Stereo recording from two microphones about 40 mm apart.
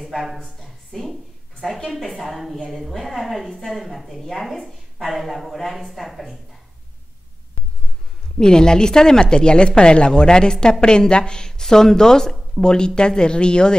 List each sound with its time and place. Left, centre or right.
0.0 s speech: centre
0.6 s a sound: centre
1.6 s a woman's voice: centre
8.4 s speech: centre